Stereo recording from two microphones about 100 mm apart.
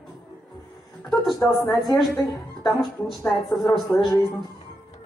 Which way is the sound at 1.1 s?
5° left (ahead or behind).